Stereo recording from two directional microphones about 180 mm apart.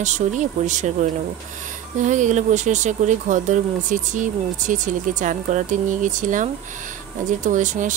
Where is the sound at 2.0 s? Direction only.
45° right (ahead or behind).